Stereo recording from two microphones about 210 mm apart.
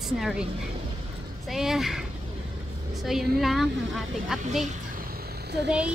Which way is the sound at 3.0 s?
Centre (ahead or behind).